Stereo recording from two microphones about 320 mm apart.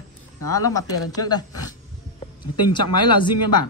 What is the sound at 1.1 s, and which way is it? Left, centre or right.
Speech, centre.